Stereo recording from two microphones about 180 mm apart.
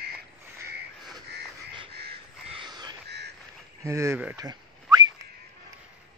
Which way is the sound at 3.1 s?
65° right (ahead or behind).